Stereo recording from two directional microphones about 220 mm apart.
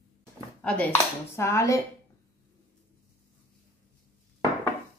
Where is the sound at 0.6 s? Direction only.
5° left (ahead or behind).